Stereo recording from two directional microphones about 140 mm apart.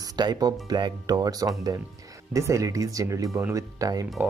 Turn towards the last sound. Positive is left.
turn(degrees=-25)  # may be behind; listen again after turning